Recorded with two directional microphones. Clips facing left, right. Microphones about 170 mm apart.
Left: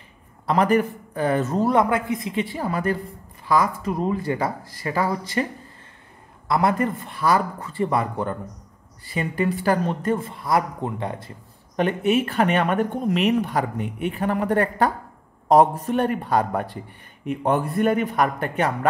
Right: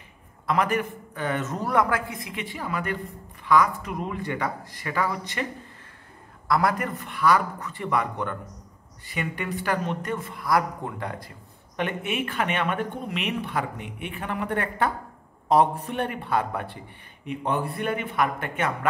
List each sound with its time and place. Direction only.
0.5 s a woman's voice: 35° left (ahead or behind)
11.7 s speech: 40° left (ahead or behind)